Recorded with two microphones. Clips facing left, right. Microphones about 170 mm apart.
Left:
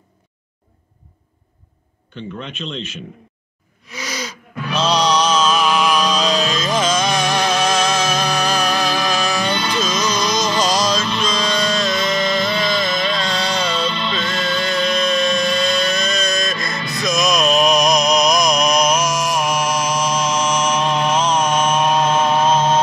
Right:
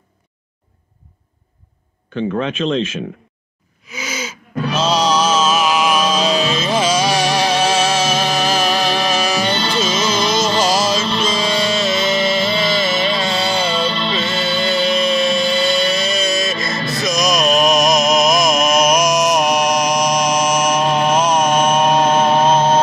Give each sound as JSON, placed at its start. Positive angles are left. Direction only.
{"t": 2.1, "sound": "speech", "side_deg": -80}
{"t": 3.9, "sound": "gasp", "side_deg": -5}
{"t": 4.7, "sound": "music", "side_deg": -5}
{"t": 9.5, "sound": "music", "side_deg": -25}
{"t": 10.6, "sound": "music", "side_deg": -5}
{"t": 13.8, "sound": "music", "side_deg": -30}
{"t": 14.4, "sound": "music", "side_deg": -5}
{"t": 21.1, "sound": "chant", "side_deg": -10}
{"t": 21.5, "sound": "mantra", "side_deg": -30}